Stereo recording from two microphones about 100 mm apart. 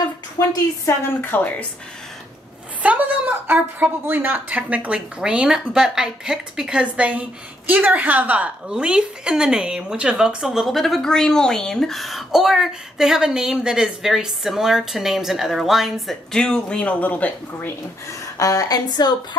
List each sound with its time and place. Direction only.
0.4 s a woman's voice: 35° left (ahead or behind)
1.0 s a woman's voice: 20° left (ahead or behind)
2.8 s a woman's voice: 15° right (ahead or behind); by 19.1 s 45° left (ahead or behind)